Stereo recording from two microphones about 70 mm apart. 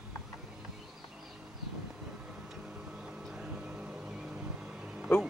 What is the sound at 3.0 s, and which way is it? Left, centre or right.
Music, centre.